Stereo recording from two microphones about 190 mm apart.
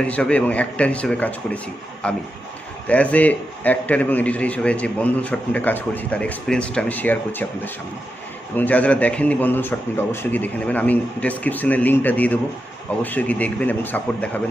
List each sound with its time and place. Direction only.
0.0 s a man's voice: 5° left (ahead or behind)